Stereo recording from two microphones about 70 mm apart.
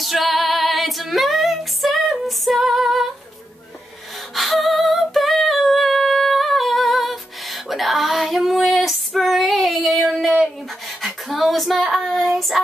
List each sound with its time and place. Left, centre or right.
0.0 s female singing: centre
4.4 s humming: centre
7.6 s female singing: centre
12.4 s child singing: centre